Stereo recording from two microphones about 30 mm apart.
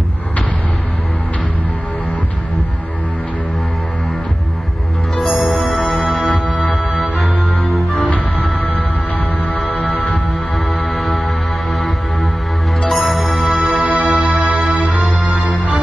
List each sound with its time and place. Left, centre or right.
5.2 s music: centre
6.4 s music: left
7.4 s music: left
9.4 s music: left
10.8 s music: centre
12.9 s music: centre
13.7 s music: right
14.2 s music: right